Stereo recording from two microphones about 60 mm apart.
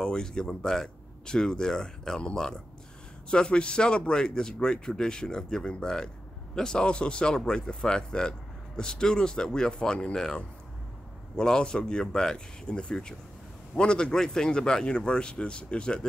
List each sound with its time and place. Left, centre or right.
0.0 s speech: centre